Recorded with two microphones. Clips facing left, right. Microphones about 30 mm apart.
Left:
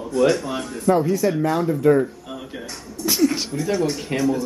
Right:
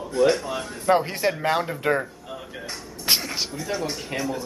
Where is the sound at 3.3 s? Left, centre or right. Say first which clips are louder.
Left 5 dB; centre.